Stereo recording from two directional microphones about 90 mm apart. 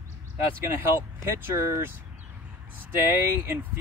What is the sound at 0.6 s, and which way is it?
Speech, 25° right (ahead or behind).